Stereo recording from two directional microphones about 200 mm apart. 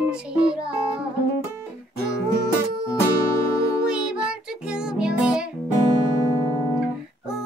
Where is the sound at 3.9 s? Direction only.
5° right (ahead or behind).